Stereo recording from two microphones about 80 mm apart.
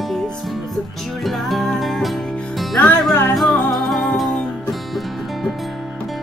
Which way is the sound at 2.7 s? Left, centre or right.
Left.